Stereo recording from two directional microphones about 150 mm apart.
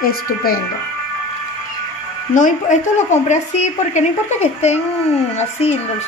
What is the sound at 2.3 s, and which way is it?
Speech, 60° left (ahead or behind).